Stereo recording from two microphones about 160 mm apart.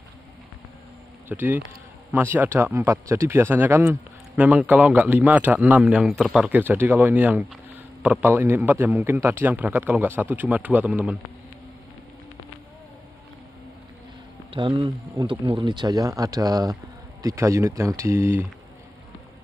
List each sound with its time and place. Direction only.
1.3 s speech: 10° right (ahead or behind)
14.5 s speech: 30° right (ahead or behind); by 18.5 s 15° right (ahead or behind)